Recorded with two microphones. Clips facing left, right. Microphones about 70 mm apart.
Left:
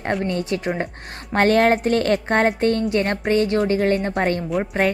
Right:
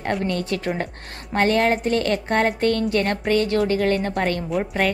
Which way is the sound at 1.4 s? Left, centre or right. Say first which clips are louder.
Left 3 dB; left.